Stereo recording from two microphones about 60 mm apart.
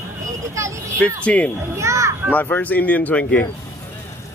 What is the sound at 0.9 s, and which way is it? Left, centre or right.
Speech, left.